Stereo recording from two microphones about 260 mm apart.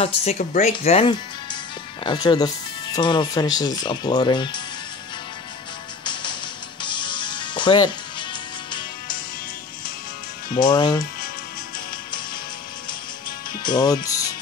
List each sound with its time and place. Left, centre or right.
0.0 s speech: left
6.8 s music: centre
10.7 s speech: centre
13.6 s speech: centre